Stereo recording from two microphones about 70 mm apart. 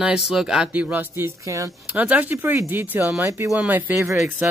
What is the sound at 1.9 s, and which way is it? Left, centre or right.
Speech, right.